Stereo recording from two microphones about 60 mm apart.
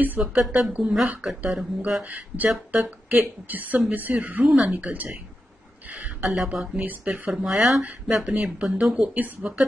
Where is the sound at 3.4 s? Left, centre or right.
Right.